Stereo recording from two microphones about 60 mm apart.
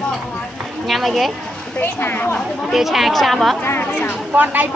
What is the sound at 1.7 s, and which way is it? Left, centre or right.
Speech, left.